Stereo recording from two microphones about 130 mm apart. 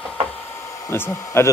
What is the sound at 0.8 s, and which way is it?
Speech, 20° left (ahead or behind).